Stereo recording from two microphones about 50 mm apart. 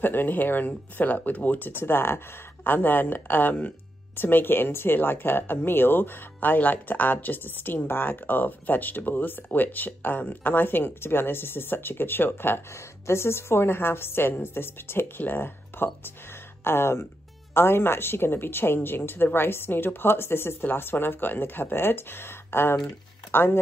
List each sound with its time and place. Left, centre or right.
0.0 s speech: left
13.0 s speech: left